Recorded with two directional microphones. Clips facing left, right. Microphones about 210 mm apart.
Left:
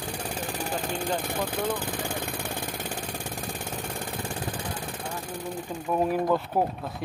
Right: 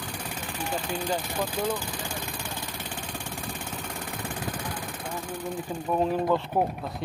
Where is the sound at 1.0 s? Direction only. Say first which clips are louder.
Even; 55° left (ahead or behind).